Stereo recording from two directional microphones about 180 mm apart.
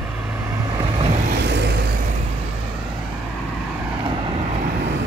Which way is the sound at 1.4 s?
70° right (ahead or behind).